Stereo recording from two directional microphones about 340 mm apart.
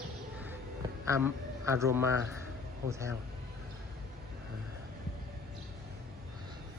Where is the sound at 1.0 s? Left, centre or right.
Centre.